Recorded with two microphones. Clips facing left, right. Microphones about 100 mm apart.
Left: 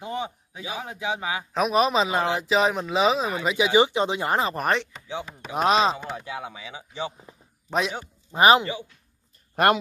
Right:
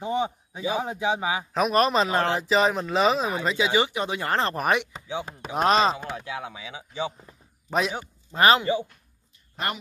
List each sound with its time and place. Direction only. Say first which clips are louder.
0.0 s a sound: right 5 dB; 20° right (ahead or behind)
0.8 s speech: right 3 dB; 20° right (ahead or behind)
1.5 s a man's voice: left 1 dB; centre (ahead or behind)
3.5 s speech: left 7 dB; 20° left (ahead or behind)
4.5 s a man's voice: right 1 dB; centre (ahead or behind)
8.3 s a man's voice: left 2 dB; 15° left (ahead or behind)
9.6 s speech: left 11 dB; 60° left (ahead or behind)